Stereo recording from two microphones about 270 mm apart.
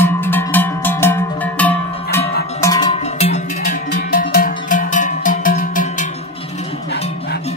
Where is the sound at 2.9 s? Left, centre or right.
Left.